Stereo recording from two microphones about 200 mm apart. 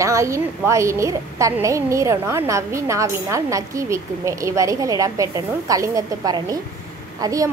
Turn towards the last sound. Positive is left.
turn(degrees=-15)  # may be behind; listen again after turning